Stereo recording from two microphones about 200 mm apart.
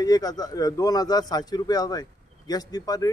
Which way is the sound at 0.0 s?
20° left (ahead or behind).